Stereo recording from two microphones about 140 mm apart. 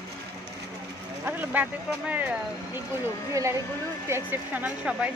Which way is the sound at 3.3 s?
20° right (ahead or behind).